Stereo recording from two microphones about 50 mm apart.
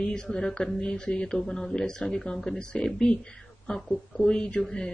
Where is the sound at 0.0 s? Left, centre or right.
Centre.